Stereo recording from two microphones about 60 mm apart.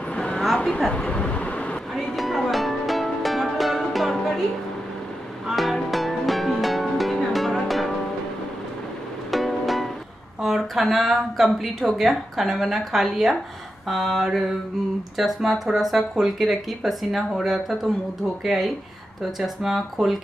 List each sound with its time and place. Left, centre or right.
0.1 s a sound: centre
0.9 s vehicle: centre
2.0 s music: centre
5.5 s music: centre
9.3 s music: centre
10.4 s a woman's voice: centre